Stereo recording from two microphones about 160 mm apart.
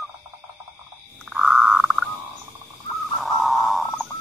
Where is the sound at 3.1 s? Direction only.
Centre (ahead or behind).